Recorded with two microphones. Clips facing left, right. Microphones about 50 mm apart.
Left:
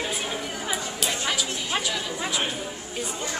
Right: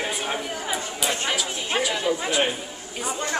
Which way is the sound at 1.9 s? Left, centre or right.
Right.